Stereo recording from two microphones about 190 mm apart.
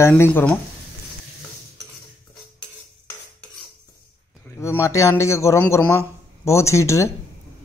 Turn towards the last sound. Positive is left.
turn(degrees=15)  # may be behind; listen again after turning